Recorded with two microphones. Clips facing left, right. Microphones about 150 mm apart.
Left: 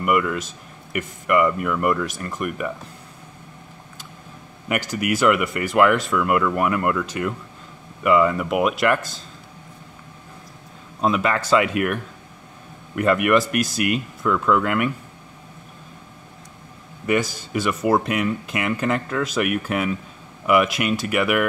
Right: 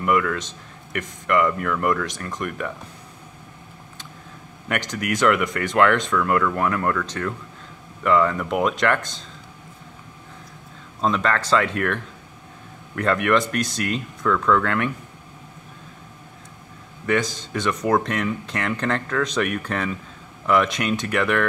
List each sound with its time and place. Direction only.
0.0 s speech: 10° left (ahead or behind)
4.6 s speech: 5° left (ahead or behind)
11.0 s speech: 10° left (ahead or behind)
17.0 s speech: 10° left (ahead or behind)